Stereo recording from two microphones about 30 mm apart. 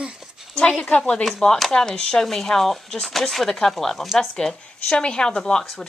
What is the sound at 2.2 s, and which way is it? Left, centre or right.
Speech, centre.